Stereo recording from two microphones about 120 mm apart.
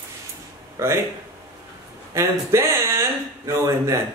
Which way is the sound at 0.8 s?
25° right (ahead or behind).